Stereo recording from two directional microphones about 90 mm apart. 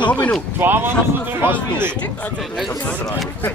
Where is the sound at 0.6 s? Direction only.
25° right (ahead or behind).